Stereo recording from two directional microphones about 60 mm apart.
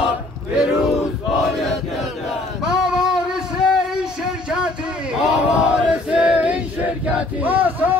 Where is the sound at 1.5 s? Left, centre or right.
Centre.